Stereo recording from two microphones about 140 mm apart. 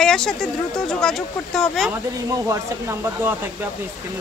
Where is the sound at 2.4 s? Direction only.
20° right (ahead or behind).